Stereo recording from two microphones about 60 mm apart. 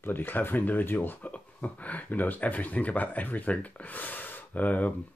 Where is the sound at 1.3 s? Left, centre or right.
Left.